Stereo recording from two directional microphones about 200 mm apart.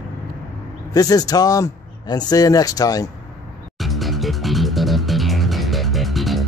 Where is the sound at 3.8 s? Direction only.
Centre (ahead or behind).